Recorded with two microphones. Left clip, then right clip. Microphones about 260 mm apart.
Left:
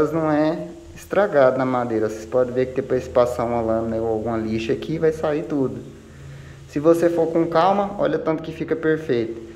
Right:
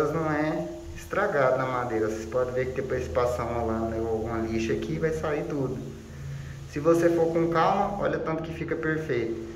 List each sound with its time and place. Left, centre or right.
0.0 s speech: left
6.7 s speech: left